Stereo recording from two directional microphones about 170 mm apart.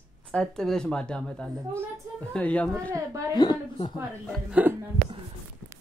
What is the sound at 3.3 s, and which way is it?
Speech, 25° left (ahead or behind).